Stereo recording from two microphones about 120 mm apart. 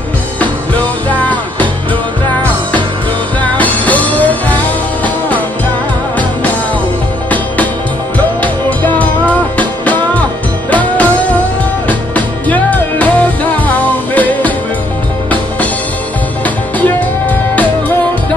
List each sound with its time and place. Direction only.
1.1 s music: 15° left (ahead or behind)
3.4 s music: 15° left (ahead or behind)
8.4 s music: 15° left (ahead or behind)
12.4 s music: 15° left (ahead or behind)
16.4 s music: 15° left (ahead or behind)